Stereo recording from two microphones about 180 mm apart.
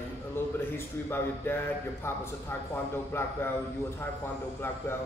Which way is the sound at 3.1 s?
15° left (ahead or behind).